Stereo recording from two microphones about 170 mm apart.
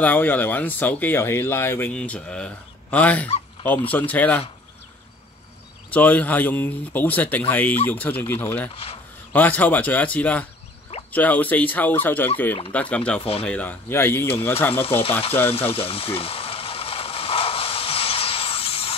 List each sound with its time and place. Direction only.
0.0 s speech: 10° left (ahead or behind)
5.9 s speech: 10° left (ahead or behind)
8.6 s speech: 35° left (ahead or behind)
9.3 s speech: 10° left (ahead or behind)
13.2 s speech: 35° left (ahead or behind)
13.5 s speech: 10° left (ahead or behind)
14.7 s speech: 35° left (ahead or behind)
15.5 s a sound: 35° left (ahead or behind)